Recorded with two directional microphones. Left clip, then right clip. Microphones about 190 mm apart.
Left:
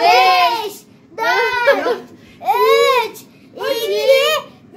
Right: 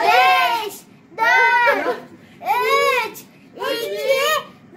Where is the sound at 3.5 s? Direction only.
10° left (ahead or behind).